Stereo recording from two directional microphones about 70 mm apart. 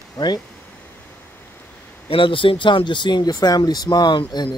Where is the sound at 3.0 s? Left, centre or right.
Left.